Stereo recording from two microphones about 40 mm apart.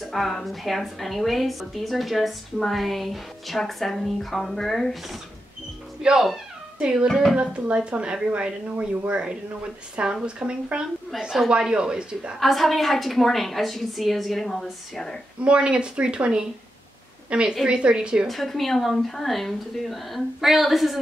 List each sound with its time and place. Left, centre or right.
0.0 s a woman's voice: centre
6.0 s speech: centre
12.4 s a woman's voice: centre
15.4 s a woman's voice: right
18.2 s a woman's voice: centre